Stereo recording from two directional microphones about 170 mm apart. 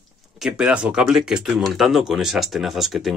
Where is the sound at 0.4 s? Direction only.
5° right (ahead or behind).